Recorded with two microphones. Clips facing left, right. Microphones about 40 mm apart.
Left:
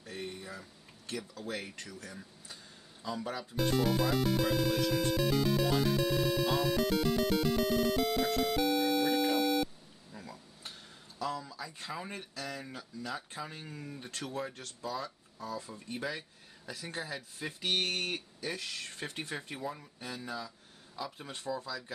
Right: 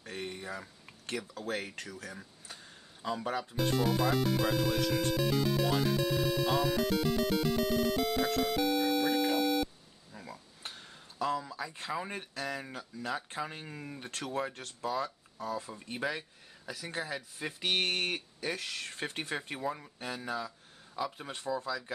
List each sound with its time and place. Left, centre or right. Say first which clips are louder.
0.0 s a sound: right 2 dB; right
1.0 s speech: right 2 dB; right
1.5 s speech: right 4 dB; right
2.4 s a sound: right 1 dB; right
3.2 s speech: right 3 dB; right
3.5 s music: left 1 dB; centre
10.1 s a sound: even; centre
10.6 s a sound: right 2 dB; right
11.9 s speech: right 4 dB; right
14.5 s speech: right 4 dB; right
16.9 s speech: right 3 dB; centre
17.6 s speech: right 2 dB; right
20.0 s speech: right 2 dB; right
20.9 s speech: right 4 dB; centre